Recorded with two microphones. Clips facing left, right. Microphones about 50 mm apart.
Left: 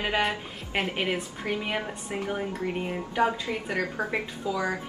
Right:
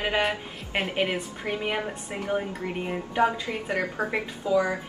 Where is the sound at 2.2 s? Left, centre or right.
Centre.